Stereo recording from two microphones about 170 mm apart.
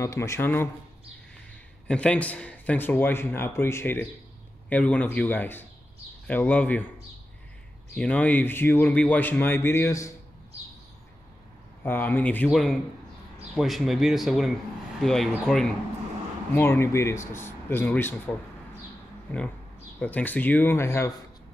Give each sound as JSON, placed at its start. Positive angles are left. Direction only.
{"t": 0.0, "sound": "speech", "side_deg": 15}
{"t": 1.9, "sound": "speech", "side_deg": 5}
{"t": 7.9, "sound": "speech", "side_deg": 10}
{"t": 11.8, "sound": "speech", "side_deg": 10}
{"t": 20.0, "sound": "speech", "side_deg": 10}